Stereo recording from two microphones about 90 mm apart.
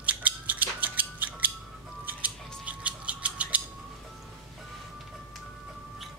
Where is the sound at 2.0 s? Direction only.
15° right (ahead or behind).